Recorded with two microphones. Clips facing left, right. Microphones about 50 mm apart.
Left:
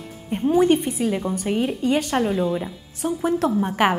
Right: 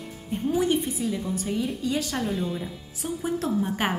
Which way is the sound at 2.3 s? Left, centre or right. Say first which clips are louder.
Left 7 dB; centre.